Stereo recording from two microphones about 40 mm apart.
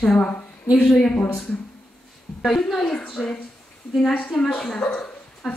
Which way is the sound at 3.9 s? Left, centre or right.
Centre.